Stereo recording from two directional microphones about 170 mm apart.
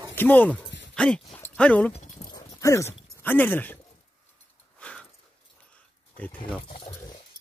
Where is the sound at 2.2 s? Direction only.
20° left (ahead or behind).